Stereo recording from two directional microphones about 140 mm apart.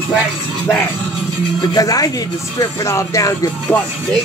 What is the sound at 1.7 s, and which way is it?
Speech, 25° left (ahead or behind).